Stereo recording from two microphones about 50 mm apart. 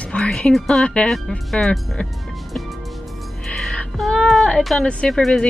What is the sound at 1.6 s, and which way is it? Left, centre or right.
Speech, left.